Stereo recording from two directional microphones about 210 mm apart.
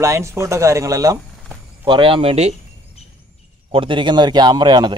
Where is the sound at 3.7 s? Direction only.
25° right (ahead or behind).